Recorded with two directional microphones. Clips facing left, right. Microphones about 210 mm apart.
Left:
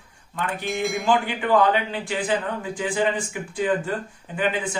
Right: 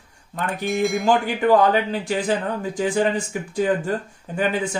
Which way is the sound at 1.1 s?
40° right (ahead or behind).